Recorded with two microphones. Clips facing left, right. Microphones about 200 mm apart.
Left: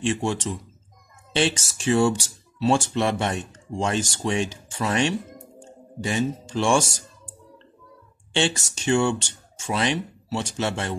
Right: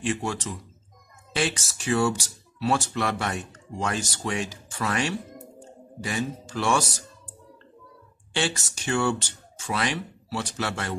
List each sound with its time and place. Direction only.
0.0 s speech: 25° left (ahead or behind)
8.3 s speech: 25° left (ahead or behind)